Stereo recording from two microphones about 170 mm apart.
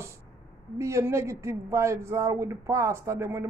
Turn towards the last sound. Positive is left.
turn(degrees=-15)  # may be behind; listen again after turning